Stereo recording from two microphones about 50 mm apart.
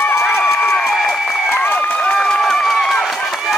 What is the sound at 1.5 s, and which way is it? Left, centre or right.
Crowd, left.